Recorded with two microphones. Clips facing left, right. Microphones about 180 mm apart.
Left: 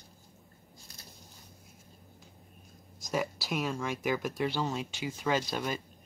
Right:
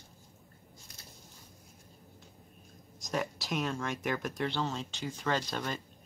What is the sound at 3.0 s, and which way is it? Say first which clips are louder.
Speech: left 2 dB; 5° left (ahead or behind).